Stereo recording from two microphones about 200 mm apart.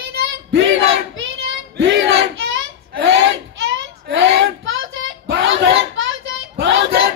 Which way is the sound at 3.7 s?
65° right (ahead or behind).